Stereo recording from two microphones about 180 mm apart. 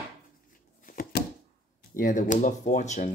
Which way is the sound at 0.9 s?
50° left (ahead or behind).